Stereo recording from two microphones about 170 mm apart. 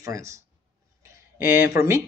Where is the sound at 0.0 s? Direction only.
20° right (ahead or behind).